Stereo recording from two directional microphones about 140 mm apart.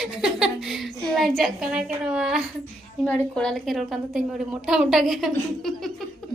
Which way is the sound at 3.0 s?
5° left (ahead or behind).